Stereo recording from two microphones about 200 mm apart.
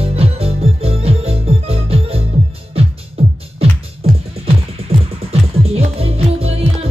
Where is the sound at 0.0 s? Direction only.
30° right (ahead or behind).